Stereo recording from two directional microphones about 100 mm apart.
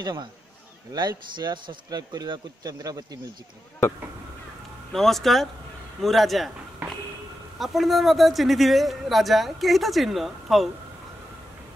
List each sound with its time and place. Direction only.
0.0 s speech: 45° right (ahead or behind)
4.9 s a man's voice: centre (ahead or behind)
7.5 s a man's voice: centre (ahead or behind)